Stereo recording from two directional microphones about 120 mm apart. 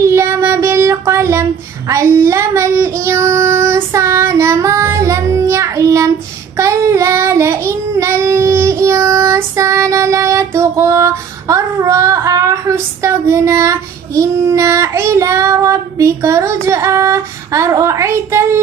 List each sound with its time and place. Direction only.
0.0 s child singing: 25° right (ahead or behind)